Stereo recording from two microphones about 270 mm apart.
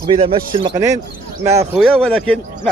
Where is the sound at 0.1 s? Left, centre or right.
Centre.